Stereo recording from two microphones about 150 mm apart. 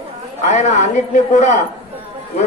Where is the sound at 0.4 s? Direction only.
55° left (ahead or behind).